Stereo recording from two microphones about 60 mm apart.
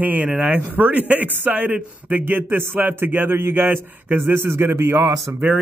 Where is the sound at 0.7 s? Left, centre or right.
Right.